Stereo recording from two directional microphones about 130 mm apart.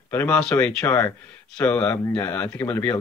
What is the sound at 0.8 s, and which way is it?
Speech, 20° left (ahead or behind).